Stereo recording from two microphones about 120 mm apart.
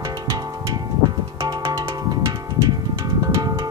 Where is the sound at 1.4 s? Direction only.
25° right (ahead or behind).